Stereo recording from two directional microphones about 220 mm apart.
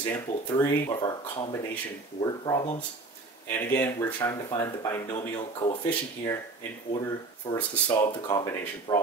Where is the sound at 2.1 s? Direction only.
20° left (ahead or behind).